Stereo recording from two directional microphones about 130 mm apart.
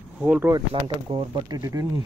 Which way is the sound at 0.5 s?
35° right (ahead or behind).